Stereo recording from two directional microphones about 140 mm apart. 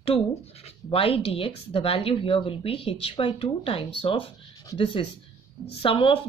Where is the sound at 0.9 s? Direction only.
40° left (ahead or behind).